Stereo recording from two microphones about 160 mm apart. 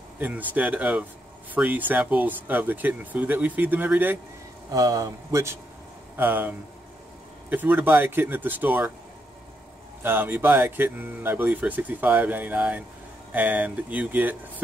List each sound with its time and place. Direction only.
0.2 s speech: 10° right (ahead or behind)
4.6 s speech: 20° right (ahead or behind)
10.0 s speech: 10° right (ahead or behind)